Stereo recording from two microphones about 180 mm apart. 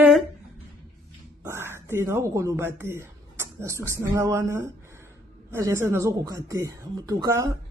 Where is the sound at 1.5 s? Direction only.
15° right (ahead or behind).